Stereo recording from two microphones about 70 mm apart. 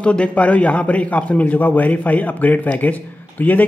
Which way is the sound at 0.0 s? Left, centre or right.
Centre.